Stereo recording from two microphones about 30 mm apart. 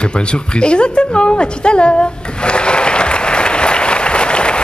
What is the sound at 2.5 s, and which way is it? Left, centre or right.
Applause, left.